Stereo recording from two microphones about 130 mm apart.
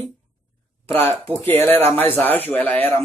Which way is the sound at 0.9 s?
15° left (ahead or behind).